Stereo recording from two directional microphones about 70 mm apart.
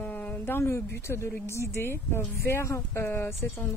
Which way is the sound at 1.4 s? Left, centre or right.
Left.